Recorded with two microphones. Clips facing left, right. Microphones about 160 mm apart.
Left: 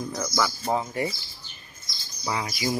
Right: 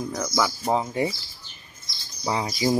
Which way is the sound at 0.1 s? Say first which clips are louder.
Right 1 dB; 10° right (ahead or behind).